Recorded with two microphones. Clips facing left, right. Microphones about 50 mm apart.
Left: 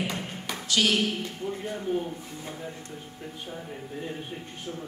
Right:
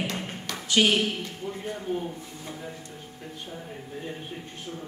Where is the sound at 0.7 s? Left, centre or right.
Right.